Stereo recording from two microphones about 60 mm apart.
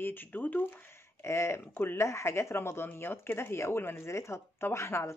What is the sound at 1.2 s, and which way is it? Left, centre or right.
Speech, left.